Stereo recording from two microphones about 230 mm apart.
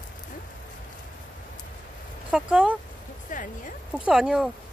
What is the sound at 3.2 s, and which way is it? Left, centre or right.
Speech, left.